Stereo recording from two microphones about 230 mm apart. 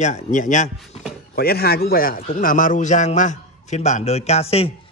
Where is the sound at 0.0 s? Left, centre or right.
Left.